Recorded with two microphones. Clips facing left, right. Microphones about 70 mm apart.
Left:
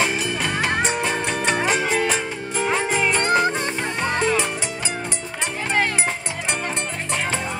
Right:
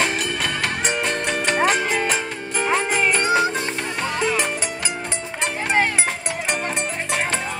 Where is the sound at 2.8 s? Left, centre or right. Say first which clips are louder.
Right 1 dB; right.